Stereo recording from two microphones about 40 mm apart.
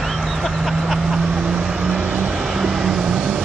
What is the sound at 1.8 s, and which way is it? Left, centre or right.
Vehicle, right.